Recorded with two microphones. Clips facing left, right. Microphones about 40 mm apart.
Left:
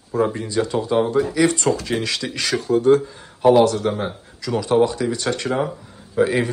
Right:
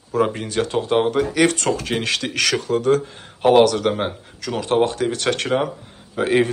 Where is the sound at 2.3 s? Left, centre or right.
Right.